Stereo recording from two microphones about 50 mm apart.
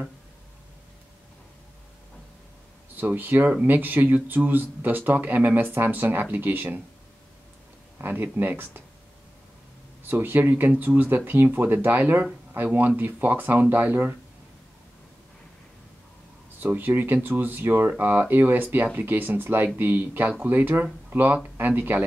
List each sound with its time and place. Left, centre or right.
3.0 s speech: right
8.0 s speech: right
10.0 s speech: right
16.7 s speech: right